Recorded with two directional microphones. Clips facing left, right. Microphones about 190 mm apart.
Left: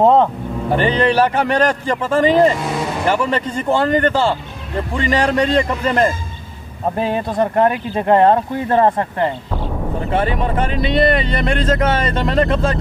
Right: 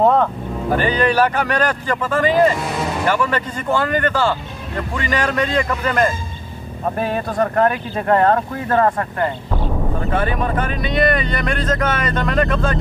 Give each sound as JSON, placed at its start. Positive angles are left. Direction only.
{"t": 0.0, "sound": "speech", "side_deg": 25}